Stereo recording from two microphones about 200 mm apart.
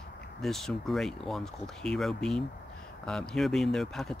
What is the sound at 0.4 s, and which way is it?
Speech, centre (ahead or behind).